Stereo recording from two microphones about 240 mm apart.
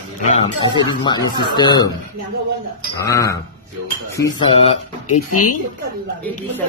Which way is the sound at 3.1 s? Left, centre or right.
Centre.